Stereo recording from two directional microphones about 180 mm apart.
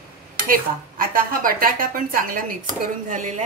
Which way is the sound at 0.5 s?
55° right (ahead or behind).